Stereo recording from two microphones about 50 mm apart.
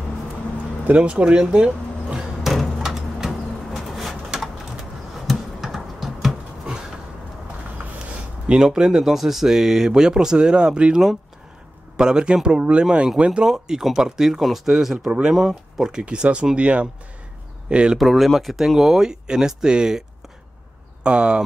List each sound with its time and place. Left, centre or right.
0.9 s speech: right
2.4 s a sound: centre
3.3 s bird: centre
4.7 s typing: centre
8.5 s speech: centre
12.0 s speech: centre
13.5 s speech: centre
15.0 s speech: right
15.3 s speech: centre
16.0 s speech: right
17.9 s speech: centre
21.0 s speech: right